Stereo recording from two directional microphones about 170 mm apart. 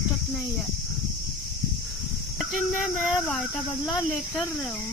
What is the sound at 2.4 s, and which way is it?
Speech, centre (ahead or behind).